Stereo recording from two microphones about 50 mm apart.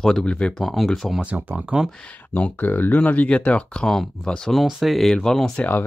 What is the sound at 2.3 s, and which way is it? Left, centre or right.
Speech, left.